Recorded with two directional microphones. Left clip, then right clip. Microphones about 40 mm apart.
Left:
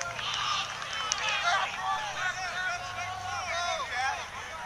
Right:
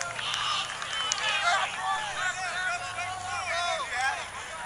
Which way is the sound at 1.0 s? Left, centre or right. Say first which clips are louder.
Right 2 dB; left.